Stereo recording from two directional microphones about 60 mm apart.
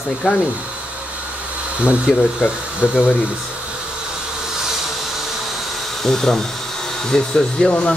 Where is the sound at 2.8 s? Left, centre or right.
Centre.